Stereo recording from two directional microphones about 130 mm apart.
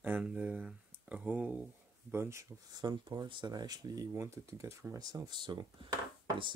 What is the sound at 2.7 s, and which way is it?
Speech, 35° right (ahead or behind).